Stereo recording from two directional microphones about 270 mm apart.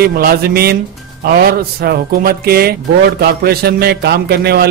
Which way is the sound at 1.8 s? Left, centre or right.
Right.